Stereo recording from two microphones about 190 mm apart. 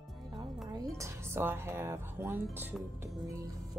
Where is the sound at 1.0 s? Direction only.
15° right (ahead or behind).